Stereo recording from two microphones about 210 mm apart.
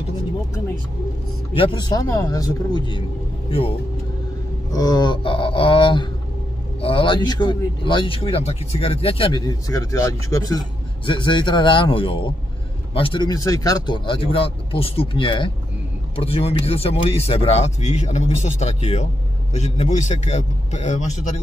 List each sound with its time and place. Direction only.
1.5 s speech: 25° left (ahead or behind)
4.7 s a sound: 20° left (ahead or behind)
6.8 s a man's voice: 25° left (ahead or behind)